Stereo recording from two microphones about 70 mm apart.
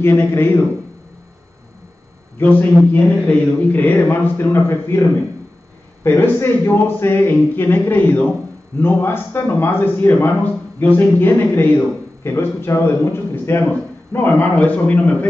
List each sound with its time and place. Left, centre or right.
0.0 s a man's voice: left
2.3 s a man's voice: left
6.0 s a man's voice: left